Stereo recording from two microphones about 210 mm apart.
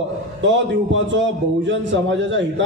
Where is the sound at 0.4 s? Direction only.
60° right (ahead or behind).